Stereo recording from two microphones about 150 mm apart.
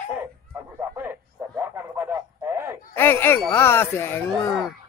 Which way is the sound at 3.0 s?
15° left (ahead or behind).